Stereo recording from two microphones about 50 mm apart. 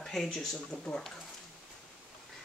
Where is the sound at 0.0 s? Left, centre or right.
Centre.